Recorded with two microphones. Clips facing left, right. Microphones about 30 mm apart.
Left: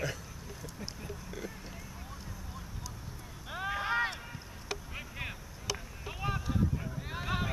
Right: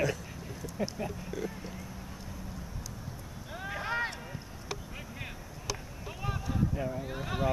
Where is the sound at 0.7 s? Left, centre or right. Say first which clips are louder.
Right 12 dB; right.